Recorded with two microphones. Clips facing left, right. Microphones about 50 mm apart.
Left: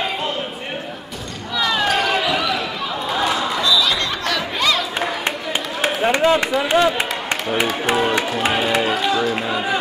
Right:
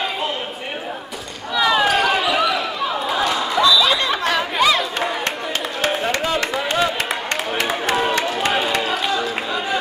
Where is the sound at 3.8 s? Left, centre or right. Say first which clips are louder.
Right 2 dB; centre.